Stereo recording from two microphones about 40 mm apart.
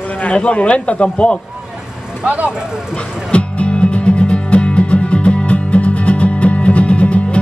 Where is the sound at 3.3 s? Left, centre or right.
Left.